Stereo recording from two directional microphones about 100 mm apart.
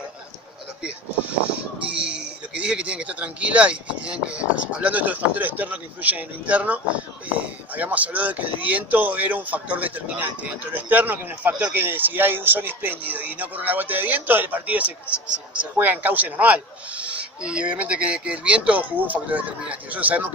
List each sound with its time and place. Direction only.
2.0 s speech: 10° right (ahead or behind)